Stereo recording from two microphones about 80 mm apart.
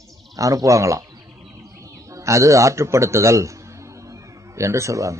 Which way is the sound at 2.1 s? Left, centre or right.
Right.